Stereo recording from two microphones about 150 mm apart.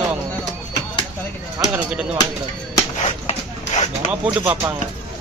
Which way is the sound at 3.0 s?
45° left (ahead or behind).